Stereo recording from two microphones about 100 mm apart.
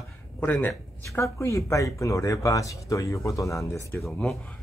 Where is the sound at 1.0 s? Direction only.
30° left (ahead or behind).